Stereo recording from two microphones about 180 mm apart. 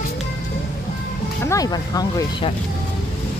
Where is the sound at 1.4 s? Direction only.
20° left (ahead or behind).